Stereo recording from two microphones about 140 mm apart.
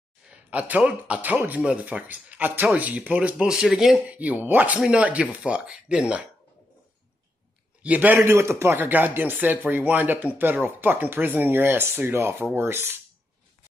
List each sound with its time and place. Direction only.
0.3 s speech: 10° right (ahead or behind)
7.8 s speech: 10° right (ahead or behind)